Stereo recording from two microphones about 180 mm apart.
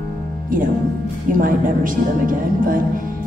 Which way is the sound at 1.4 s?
50° right (ahead or behind).